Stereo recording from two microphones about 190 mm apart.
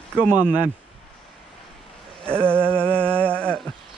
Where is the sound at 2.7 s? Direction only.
5° left (ahead or behind).